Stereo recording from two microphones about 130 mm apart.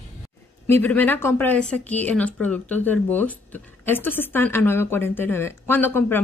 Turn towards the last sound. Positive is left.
turn(degrees=15)  # may be behind; listen again after turning